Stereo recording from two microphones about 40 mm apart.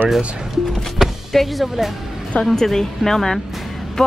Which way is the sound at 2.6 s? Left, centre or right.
Centre.